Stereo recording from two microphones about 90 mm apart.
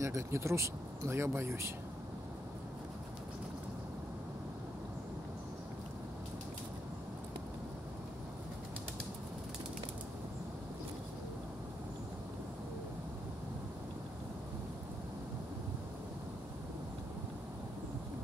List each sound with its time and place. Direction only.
0.0 s speech: 30° right (ahead or behind)